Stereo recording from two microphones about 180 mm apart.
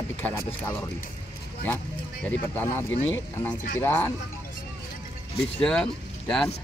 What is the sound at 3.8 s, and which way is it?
Speech, 10° left (ahead or behind).